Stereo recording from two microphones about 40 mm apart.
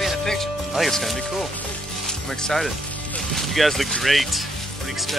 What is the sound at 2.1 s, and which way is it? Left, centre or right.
Music, centre.